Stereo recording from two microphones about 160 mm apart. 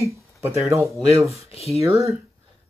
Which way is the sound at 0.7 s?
15° right (ahead or behind).